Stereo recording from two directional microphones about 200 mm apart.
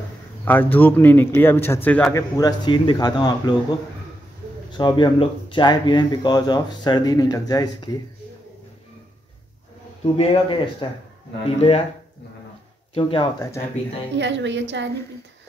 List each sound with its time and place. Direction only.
0.5 s a man's voice: 10° left (ahead or behind)
2.3 s speech: 20° left (ahead or behind)
4.6 s speech: 20° left (ahead or behind)
10.1 s speech: 25° left (ahead or behind)
12.9 s speech: 25° left (ahead or behind)
14.1 s a woman's voice: 65° right (ahead or behind)